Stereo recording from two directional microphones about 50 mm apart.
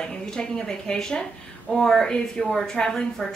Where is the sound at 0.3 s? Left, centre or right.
Centre.